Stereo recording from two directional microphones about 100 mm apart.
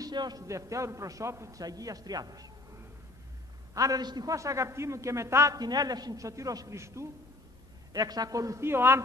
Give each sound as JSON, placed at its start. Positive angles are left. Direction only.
{"t": 0.0, "sound": "a man's voice", "side_deg": -45}
{"t": 3.7, "sound": "a man's voice", "side_deg": -35}
{"t": 5.6, "sound": "a man's voice", "side_deg": -40}
{"t": 7.9, "sound": "a man's voice", "side_deg": -40}